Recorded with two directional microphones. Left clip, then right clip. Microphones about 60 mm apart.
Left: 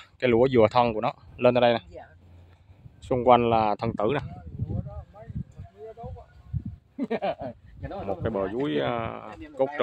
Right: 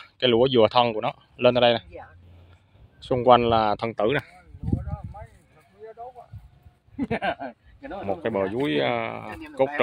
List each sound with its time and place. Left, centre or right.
0.2 s speech: left
1.4 s speech: left
3.0 s a sound: left
3.3 s speech: centre
7.0 s speech: left
8.1 s speech: right